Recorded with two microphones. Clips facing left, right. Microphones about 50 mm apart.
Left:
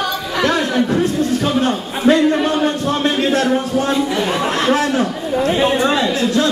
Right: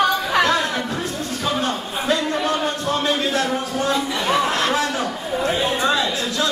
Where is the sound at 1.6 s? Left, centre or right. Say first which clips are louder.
Left 5 dB; left.